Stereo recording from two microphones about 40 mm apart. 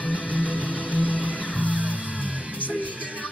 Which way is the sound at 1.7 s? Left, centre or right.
Right.